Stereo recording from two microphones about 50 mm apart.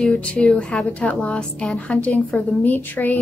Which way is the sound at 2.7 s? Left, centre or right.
Left.